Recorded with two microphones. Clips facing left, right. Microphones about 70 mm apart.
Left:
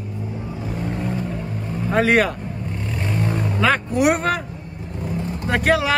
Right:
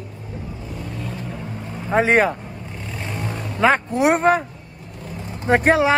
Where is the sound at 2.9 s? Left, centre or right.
Centre.